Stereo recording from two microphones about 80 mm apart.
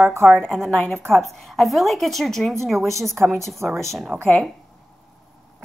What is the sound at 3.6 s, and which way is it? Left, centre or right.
Speech, right.